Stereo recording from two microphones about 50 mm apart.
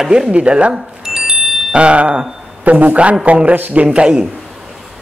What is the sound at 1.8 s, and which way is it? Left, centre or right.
Speech, right.